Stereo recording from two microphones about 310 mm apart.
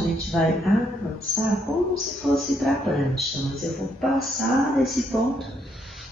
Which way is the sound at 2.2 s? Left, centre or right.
Centre.